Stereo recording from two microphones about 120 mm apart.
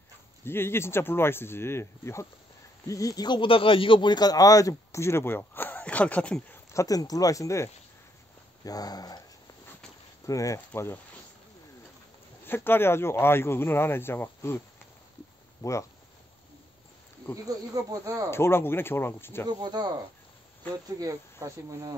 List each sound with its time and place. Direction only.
0.5 s speech: 20° left (ahead or behind)
6.7 s speech: 30° left (ahead or behind)
10.2 s speech: 25° left (ahead or behind)
12.4 s speech: 20° left (ahead or behind)
15.6 s speech: 25° left (ahead or behind)
17.8 s speech: 30° right (ahead or behind)
18.3 s speech: 20° left (ahead or behind)
19.5 s speech: 35° right (ahead or behind)